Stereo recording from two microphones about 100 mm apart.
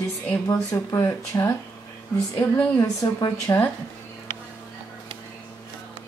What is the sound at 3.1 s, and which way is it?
Speech, 40° left (ahead or behind).